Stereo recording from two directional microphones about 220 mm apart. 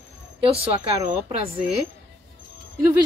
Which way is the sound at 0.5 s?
25° right (ahead or behind).